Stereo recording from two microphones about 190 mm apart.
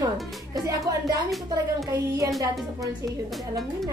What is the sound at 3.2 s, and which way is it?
Speech, centre (ahead or behind).